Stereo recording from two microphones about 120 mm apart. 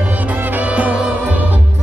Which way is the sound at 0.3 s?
15° right (ahead or behind).